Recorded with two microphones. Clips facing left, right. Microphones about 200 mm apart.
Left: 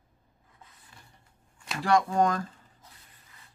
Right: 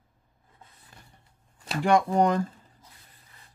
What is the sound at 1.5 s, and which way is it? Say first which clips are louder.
Shuffling cards: right 5 dB; 35° right (ahead or behind).